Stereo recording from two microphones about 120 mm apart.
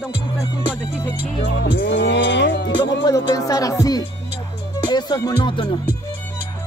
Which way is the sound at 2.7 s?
40° left (ahead or behind).